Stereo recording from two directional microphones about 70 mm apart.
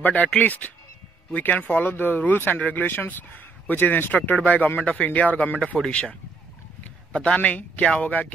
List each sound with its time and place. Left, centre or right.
0.0 s speech: left
5.8 s speech: centre
7.2 s speech: centre